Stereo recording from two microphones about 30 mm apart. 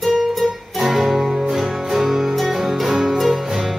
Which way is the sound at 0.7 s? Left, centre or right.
Centre.